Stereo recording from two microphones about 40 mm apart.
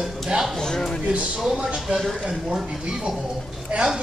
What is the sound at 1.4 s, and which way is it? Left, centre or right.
A woman's voice, right.